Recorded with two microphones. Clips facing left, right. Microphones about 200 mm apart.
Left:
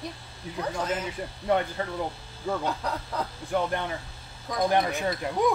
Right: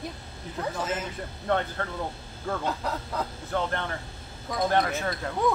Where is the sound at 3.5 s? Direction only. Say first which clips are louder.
Left 2 dB; 15° left (ahead or behind).